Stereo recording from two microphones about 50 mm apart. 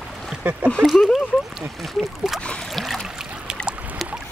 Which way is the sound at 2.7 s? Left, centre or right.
Centre.